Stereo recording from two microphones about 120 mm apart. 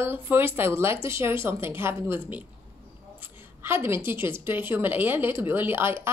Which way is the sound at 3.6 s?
20° right (ahead or behind).